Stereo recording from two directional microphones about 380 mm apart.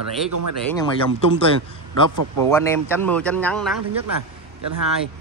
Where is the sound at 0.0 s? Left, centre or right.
Right.